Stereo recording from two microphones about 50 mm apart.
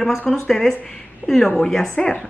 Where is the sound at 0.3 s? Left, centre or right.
Centre.